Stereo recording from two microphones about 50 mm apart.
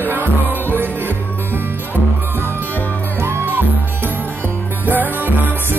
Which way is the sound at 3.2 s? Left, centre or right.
Right.